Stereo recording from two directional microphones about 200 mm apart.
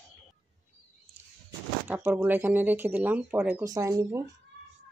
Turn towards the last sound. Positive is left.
turn(degrees=-15)  # may be behind; listen again after turning